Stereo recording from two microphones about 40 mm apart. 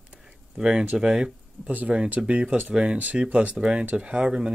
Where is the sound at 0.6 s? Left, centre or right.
Right.